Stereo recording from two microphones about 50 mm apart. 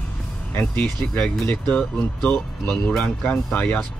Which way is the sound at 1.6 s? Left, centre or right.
Left.